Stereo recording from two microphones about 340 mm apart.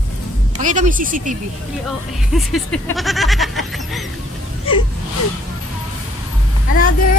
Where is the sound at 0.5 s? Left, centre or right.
Right.